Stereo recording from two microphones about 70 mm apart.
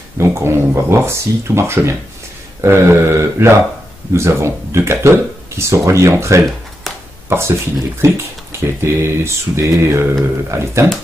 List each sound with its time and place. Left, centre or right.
0.2 s speech: right